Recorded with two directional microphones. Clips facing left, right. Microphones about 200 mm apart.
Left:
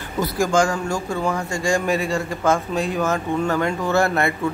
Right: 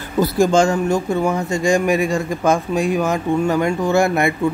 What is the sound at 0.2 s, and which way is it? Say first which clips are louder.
Speech: right 5 dB; 25° right (ahead or behind).